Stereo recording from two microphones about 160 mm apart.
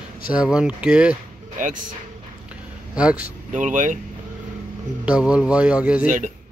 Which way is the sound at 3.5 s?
50° right (ahead or behind).